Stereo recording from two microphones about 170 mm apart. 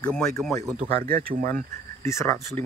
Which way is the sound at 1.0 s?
55° right (ahead or behind).